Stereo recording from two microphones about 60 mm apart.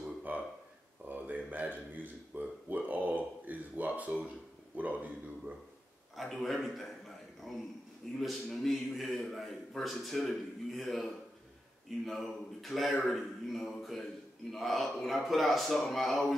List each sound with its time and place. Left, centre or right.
0.3 s a sound: right
4.7 s a man's voice: right
6.1 s a man's voice: centre